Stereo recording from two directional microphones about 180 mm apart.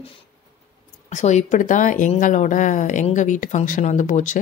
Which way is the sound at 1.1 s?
40° left (ahead or behind).